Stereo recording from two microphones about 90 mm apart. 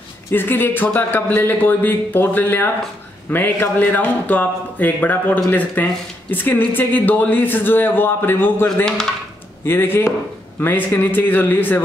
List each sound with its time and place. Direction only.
0.3 s a man's voice: 25° left (ahead or behind)
9.7 s a man's voice: 25° left (ahead or behind)